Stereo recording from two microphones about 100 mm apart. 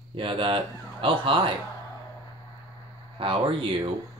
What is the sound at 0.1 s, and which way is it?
Speech, 60° right (ahead or behind).